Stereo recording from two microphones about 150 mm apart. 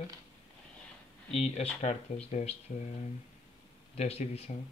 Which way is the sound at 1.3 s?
45° left (ahead or behind).